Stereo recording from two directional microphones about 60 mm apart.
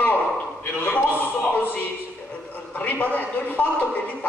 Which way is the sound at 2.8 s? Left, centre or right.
Left.